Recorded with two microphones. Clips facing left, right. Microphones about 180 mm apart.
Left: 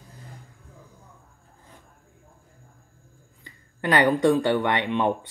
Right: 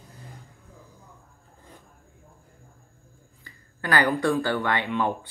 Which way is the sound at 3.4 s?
20° left (ahead or behind).